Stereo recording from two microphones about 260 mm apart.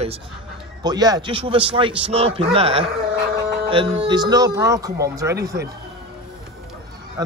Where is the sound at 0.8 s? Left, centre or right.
Centre.